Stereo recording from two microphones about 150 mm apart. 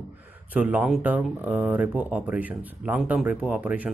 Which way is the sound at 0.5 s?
10° right (ahead or behind).